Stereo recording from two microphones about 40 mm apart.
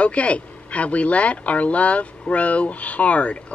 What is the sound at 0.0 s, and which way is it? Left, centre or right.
Speech, left.